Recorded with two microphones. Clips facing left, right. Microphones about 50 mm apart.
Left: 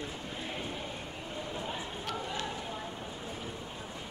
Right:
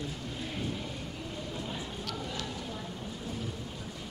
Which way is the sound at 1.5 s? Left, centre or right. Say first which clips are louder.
Left 1 dB; left.